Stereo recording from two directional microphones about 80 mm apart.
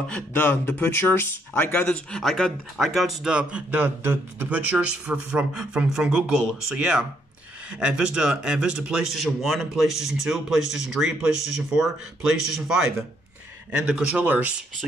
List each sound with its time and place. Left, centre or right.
0.3 s speech: left
2.1 s speech: centre
3.3 s a man's voice: centre
3.8 s a man's voice: right; by 12.9 s centre
13.7 s speech: centre